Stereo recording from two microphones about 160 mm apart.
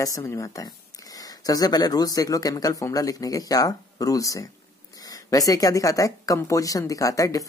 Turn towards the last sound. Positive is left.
turn(degrees=20)  # may be behind; listen again after turning